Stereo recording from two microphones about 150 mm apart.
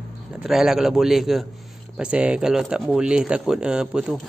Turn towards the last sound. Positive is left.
turn(degrees=-5)  # may be behind; listen again after turning